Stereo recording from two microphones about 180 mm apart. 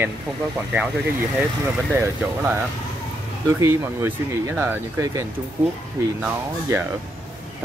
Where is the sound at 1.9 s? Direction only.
10° right (ahead or behind).